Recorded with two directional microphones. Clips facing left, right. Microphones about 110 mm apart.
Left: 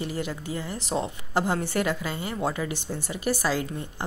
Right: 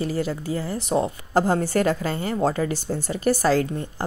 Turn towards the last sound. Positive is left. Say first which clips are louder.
# right 6 dB
turn(degrees=-45)  # may be behind; listen again after turning